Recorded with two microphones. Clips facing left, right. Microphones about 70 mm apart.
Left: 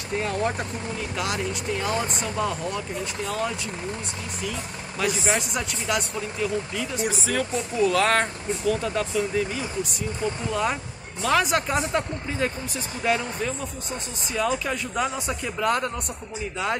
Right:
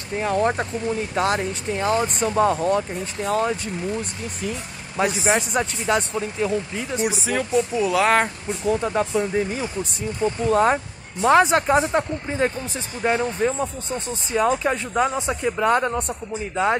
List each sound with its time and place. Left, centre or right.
0.3 s speech: right
7.1 s speech: centre
8.6 s speech: right